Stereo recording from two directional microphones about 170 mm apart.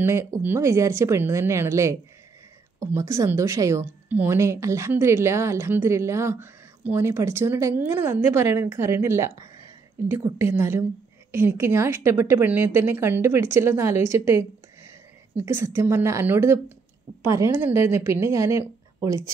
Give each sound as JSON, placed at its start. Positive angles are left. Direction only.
{"t": 0.0, "sound": "a woman's voice", "side_deg": -15}